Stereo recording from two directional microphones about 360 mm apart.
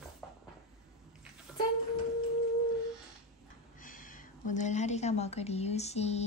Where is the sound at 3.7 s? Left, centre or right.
Left.